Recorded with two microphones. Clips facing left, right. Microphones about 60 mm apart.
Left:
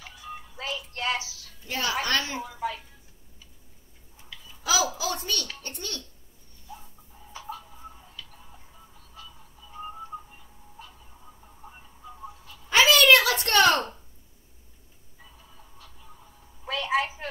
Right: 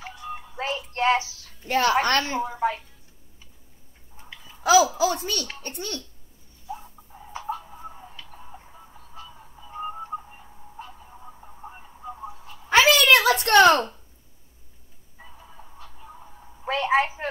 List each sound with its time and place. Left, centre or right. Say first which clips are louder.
0.3 s music: right 5 dB; right
2.4 s a child's voice: right 7 dB; right
4.2 s babbling: right 10 dB; right
4.9 s a child's voice: right 6 dB; right
6.7 s tick-tock: right 8 dB; right
12.4 s a sound: right 3 dB; right
15.1 s a sound: right 6 dB; right